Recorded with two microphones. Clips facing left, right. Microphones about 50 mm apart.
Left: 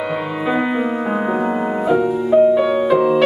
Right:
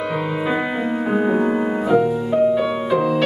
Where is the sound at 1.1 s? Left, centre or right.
Centre.